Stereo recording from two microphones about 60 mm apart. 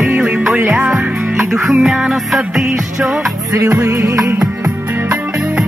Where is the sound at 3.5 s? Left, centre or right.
Right.